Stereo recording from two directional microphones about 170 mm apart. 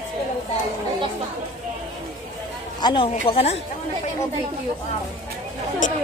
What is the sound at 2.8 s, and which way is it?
Speech, 30° left (ahead or behind).